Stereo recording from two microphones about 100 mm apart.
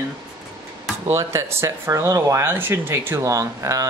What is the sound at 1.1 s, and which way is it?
Speech, 30° right (ahead or behind).